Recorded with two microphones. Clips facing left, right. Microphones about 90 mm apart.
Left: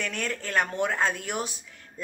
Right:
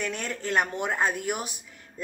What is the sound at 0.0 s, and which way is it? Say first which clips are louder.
A woman's voice: even; 20° right (ahead or behind).